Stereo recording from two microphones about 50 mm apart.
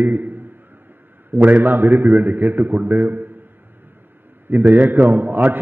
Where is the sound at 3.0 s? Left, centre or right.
Right.